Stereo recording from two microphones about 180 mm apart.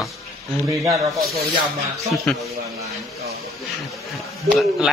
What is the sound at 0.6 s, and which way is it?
Speech, 15° right (ahead or behind).